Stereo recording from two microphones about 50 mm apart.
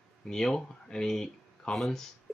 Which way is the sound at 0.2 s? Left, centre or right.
Centre.